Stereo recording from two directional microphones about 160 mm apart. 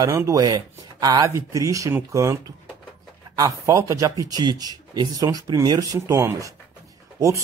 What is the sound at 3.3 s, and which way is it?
Speech, 20° right (ahead or behind).